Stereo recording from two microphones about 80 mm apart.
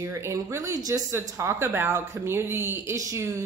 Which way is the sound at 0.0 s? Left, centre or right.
Right.